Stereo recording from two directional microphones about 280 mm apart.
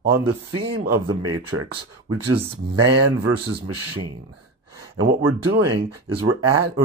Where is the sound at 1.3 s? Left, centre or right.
Right.